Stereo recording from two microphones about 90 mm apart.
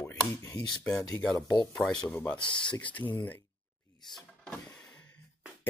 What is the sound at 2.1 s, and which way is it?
Speech, 15° left (ahead or behind).